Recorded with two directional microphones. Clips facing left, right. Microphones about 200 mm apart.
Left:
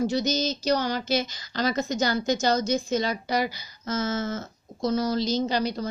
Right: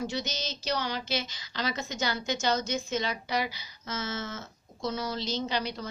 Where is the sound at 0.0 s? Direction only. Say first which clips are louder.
Left 9 dB; 40° left (ahead or behind).